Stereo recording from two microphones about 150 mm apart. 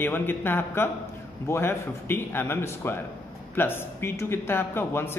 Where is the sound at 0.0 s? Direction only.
15° left (ahead or behind).